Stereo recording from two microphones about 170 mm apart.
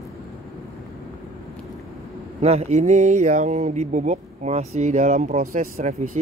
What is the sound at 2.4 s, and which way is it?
Speech, 40° right (ahead or behind).